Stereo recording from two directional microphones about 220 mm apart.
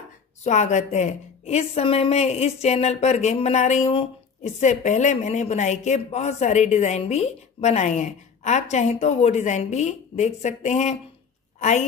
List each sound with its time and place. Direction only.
0.4 s a woman's voice: 35° left (ahead or behind)